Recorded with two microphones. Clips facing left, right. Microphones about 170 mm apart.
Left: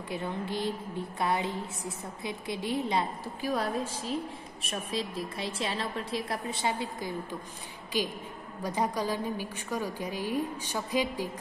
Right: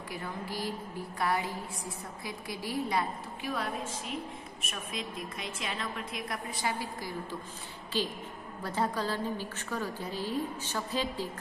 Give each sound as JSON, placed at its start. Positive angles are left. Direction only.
{"t": 0.1, "sound": "a woman's voice", "side_deg": 25}
{"t": 3.4, "sound": "a woman's voice", "side_deg": 35}